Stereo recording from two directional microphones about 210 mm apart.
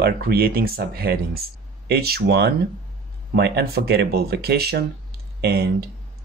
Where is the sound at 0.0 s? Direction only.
50° right (ahead or behind).